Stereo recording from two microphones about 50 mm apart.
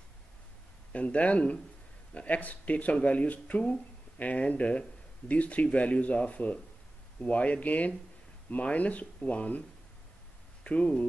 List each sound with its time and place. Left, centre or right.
0.9 s speech: left